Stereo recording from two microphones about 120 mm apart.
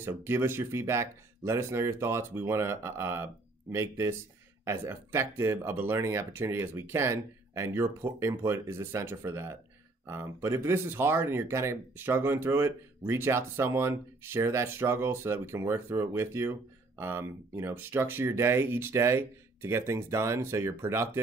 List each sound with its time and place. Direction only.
0.0 s speech: 20° right (ahead or behind)